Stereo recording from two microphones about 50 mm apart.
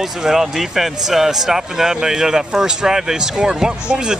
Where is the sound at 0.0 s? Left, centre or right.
Centre.